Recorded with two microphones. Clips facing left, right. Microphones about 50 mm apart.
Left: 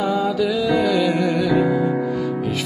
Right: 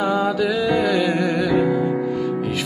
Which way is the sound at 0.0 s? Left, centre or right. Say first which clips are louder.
Even; right.